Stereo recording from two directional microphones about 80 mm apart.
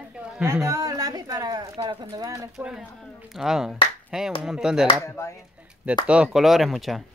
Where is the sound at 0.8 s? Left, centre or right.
Right.